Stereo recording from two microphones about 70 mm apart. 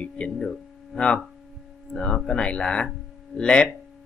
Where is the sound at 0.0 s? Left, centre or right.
Centre.